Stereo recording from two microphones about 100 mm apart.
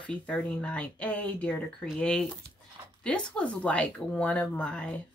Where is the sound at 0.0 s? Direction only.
10° left (ahead or behind).